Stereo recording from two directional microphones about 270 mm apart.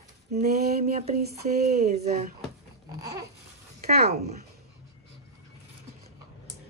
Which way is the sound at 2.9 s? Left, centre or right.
Centre.